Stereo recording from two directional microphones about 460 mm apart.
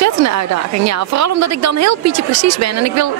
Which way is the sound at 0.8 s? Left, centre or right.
Right.